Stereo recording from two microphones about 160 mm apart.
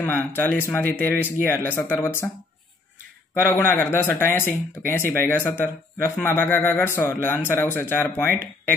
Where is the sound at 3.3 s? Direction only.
15° left (ahead or behind).